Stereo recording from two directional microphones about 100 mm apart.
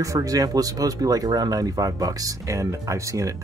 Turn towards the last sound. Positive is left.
turn(degrees=-30)  # may be behind; listen again after turning